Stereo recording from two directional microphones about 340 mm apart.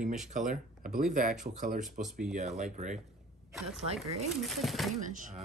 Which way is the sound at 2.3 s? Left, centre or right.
Centre.